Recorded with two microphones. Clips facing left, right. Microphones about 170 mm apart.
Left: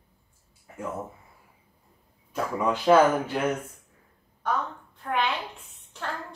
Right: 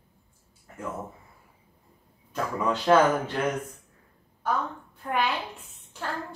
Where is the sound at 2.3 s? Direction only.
10° left (ahead or behind).